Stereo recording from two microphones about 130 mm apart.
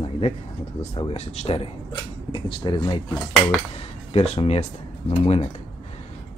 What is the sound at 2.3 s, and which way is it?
Speech, 40° left (ahead or behind).